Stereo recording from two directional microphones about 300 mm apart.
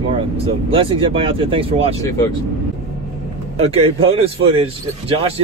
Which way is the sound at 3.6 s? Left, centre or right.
Centre.